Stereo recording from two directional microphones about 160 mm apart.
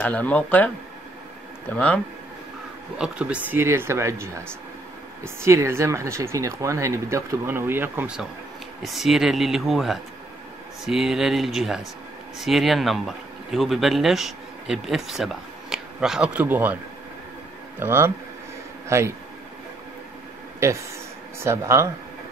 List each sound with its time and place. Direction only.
0.0 s speech: 10° left (ahead or behind)
1.7 s speech: 10° left (ahead or behind)
3.0 s speech: 5° right (ahead or behind)
8.8 s speech: centre (ahead or behind)
17.7 s speech: 15° right (ahead or behind)
21.4 s speech: 15° right (ahead or behind)